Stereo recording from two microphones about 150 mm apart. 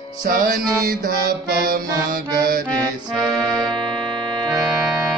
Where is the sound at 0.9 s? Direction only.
75° right (ahead or behind).